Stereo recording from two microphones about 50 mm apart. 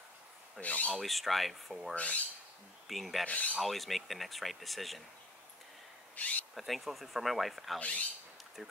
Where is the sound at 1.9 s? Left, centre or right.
Left.